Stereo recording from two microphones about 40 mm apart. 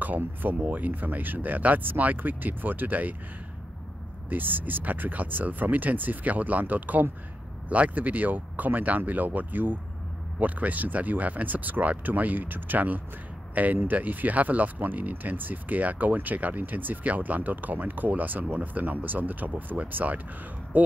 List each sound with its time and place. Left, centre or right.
0.7 s speech: right
4.3 s speech: right